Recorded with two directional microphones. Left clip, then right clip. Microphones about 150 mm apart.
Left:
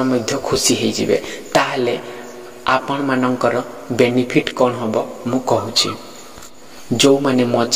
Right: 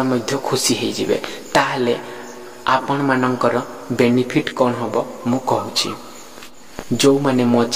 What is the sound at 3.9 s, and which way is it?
A man's voice, 15° left (ahead or behind).